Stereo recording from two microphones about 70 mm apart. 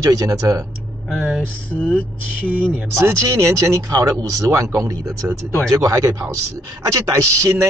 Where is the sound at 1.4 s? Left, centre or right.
Centre.